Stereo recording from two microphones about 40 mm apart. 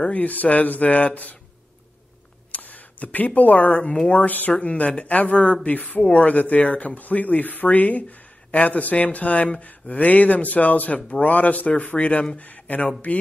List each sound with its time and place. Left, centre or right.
0.0 s speech: left
2.5 s speech: left
12.4 s speech: left